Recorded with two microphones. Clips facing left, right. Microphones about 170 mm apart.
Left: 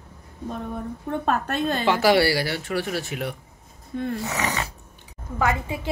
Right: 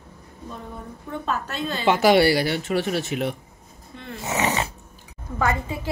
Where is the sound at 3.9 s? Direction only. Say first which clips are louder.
Left 14 dB; 45° left (ahead or behind).